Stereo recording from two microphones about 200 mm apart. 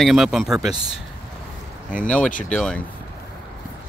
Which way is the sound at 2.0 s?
5° left (ahead or behind).